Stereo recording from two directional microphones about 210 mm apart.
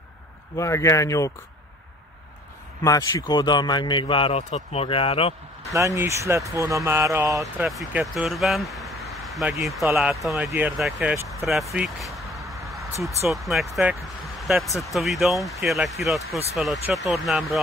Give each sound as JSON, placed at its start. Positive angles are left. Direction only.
{"t": 0.6, "sound": "speech", "side_deg": 15}
{"t": 2.8, "sound": "a man's voice", "side_deg": 15}
{"t": 5.7, "sound": "speech", "side_deg": -15}
{"t": 7.6, "sound": "speech", "side_deg": 0}
{"t": 12.2, "sound": "a sound", "side_deg": 0}
{"t": 13.3, "sound": "speech", "side_deg": 0}